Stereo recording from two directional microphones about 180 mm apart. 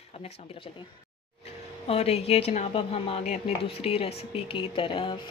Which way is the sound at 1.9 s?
35° left (ahead or behind).